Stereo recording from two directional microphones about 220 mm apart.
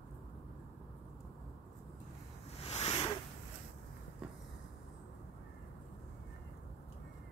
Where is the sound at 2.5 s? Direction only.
25° left (ahead or behind).